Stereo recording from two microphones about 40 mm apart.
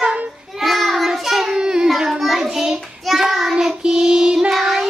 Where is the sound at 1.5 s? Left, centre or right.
Centre.